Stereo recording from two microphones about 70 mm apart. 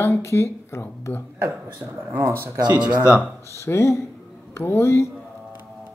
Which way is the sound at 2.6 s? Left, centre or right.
Right.